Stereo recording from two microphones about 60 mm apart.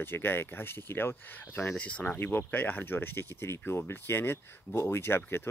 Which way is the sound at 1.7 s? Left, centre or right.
Left.